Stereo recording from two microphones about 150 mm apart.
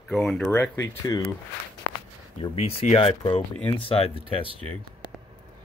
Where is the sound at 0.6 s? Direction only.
20° left (ahead or behind).